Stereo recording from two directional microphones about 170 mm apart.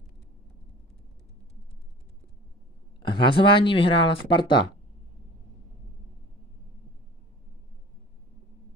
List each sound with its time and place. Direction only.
3.0 s speech: 25° left (ahead or behind)